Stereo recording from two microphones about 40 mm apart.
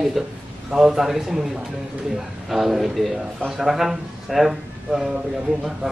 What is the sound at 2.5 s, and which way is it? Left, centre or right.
A man's voice, centre.